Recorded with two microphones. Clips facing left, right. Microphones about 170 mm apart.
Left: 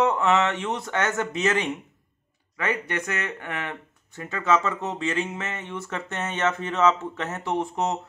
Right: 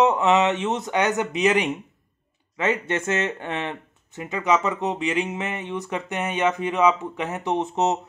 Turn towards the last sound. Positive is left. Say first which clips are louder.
# right 3 dB
turn(degrees=-20)  # may be behind; listen again after turning